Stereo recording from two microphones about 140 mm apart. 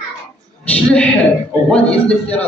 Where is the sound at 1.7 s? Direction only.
10° left (ahead or behind).